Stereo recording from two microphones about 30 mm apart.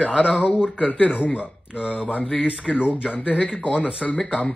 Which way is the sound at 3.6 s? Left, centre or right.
Left.